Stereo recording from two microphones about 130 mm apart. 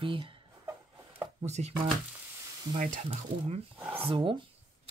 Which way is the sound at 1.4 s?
60° right (ahead or behind).